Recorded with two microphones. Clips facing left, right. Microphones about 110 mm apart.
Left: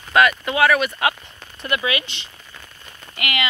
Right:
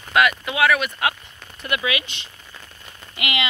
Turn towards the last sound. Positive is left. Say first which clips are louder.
# left 1 dB
turn(degrees=-20)  # may be behind; listen again after turning